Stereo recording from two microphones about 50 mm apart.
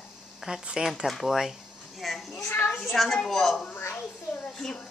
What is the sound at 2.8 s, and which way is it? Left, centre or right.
Speech, centre.